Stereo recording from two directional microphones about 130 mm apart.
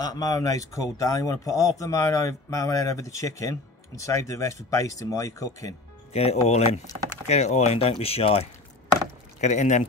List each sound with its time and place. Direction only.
0.0 s speech: 30° left (ahead or behind)
6.1 s speech: 55° left (ahead or behind)
9.4 s speech: 70° left (ahead or behind)